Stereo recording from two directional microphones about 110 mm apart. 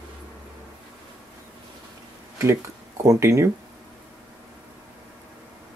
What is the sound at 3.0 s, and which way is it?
Speech, 25° right (ahead or behind).